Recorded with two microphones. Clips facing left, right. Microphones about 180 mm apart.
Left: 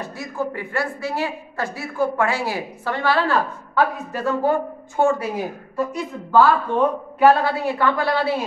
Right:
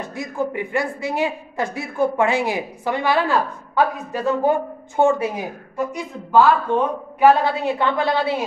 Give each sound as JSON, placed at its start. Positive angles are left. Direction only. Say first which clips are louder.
{"t": 0.1, "sound": "a woman's voice", "louder": "right 5 dB", "side_deg": -15}